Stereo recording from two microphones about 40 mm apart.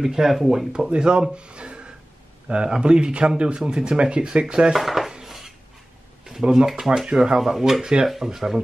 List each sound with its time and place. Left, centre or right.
0.0 s speech: centre
0.9 s speech: right
4.7 s dishes: centre
5.2 s a sound: centre
6.2 s speech: centre
7.1 s speech: centre
7.5 s speech: centre
7.8 s speech: centre